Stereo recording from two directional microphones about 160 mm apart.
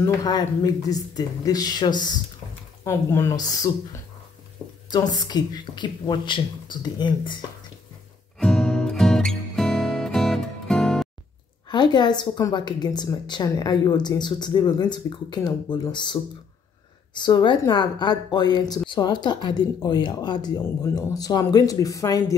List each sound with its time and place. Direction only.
0.0 s speech: 25° left (ahead or behind)
2.8 s speech: 15° left (ahead or behind)
8.4 s music: 5° left (ahead or behind)
11.7 s speech: 30° left (ahead or behind)